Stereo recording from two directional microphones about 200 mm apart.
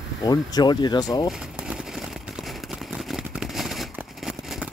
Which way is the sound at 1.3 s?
5° right (ahead or behind).